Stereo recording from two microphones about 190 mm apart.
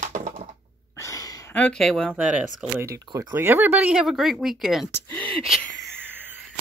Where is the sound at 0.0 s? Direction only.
40° right (ahead or behind).